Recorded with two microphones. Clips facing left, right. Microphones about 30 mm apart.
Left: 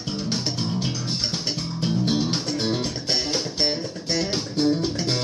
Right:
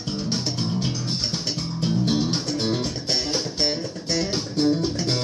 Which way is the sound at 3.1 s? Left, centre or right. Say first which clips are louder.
Even; left.